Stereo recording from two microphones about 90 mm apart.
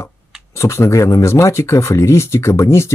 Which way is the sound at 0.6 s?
30° left (ahead or behind).